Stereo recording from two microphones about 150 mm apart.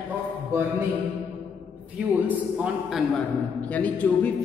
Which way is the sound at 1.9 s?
10° right (ahead or behind).